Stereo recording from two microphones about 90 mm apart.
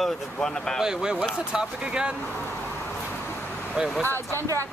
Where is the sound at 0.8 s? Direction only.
5° right (ahead or behind).